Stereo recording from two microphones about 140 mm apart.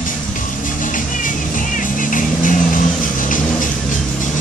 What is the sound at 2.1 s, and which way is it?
Vehicle, 70° left (ahead or behind).